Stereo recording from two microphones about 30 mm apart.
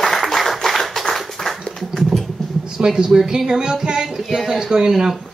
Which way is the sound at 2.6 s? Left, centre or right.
Right.